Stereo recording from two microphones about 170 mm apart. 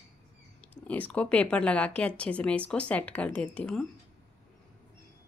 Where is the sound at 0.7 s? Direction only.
10° left (ahead or behind).